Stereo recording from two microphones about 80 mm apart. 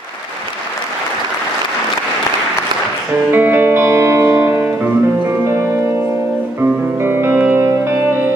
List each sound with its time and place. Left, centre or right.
3.3 s music: right
6.6 s music: right